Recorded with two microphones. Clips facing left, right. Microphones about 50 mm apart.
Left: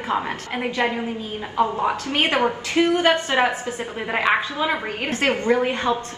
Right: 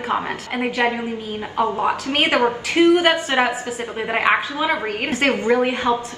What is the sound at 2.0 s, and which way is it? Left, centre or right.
Speech, right.